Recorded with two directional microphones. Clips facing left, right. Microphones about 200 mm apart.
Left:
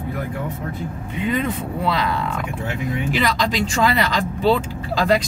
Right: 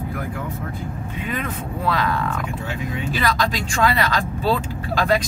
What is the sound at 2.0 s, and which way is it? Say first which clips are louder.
Speech: even; 15° left (ahead or behind).